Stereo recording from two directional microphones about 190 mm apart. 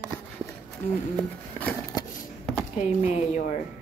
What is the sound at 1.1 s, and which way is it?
Speech, 5° left (ahead or behind).